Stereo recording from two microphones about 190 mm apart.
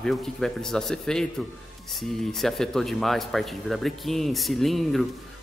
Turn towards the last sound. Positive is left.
turn(degrees=0)  # may be behind; listen again after turning